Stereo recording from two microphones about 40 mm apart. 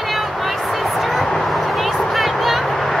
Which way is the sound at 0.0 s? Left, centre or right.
Centre.